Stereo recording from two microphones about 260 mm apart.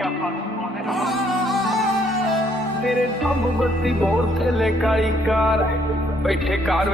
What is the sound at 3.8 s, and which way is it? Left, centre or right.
Music, centre.